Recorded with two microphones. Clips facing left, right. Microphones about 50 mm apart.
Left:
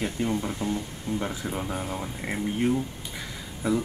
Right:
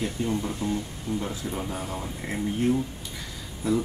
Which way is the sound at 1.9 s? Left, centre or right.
Centre.